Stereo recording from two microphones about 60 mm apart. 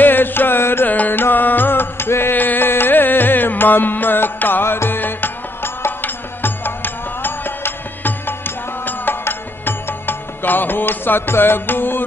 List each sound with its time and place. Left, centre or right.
0.0 s music: left
0.8 s music: left